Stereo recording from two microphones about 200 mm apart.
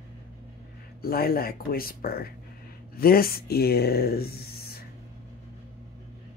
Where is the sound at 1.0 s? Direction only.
50° left (ahead or behind).